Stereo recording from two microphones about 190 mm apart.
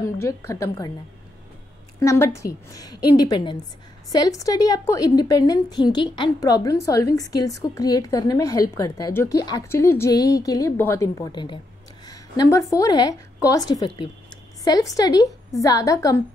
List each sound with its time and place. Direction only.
0.0 s a woman's voice: 15° left (ahead or behind)
2.0 s a woman's voice: 15° left (ahead or behind)